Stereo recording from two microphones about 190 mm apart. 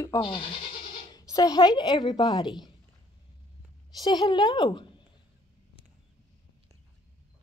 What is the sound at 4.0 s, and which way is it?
Speech, 20° left (ahead or behind).